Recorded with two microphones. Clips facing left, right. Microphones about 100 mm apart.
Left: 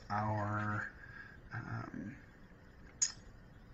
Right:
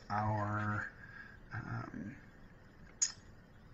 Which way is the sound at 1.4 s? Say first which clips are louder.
Right 1 dB; centre (ahead or behind).